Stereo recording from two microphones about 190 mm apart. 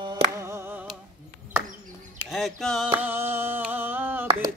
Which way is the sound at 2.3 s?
Centre (ahead or behind).